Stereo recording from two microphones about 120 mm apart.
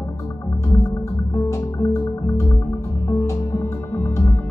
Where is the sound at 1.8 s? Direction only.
25° left (ahead or behind).